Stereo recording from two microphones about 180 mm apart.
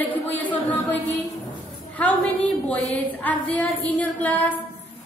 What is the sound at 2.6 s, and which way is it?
Speech, 10° left (ahead or behind).